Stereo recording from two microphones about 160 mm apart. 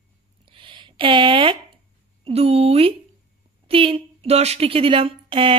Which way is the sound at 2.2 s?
40° right (ahead or behind).